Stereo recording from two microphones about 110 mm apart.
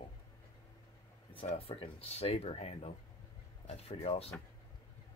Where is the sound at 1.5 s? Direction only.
60° left (ahead or behind).